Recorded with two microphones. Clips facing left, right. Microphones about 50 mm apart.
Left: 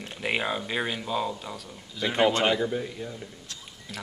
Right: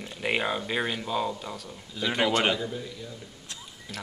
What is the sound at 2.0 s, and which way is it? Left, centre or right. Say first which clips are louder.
A man's voice: left 2 dB; left.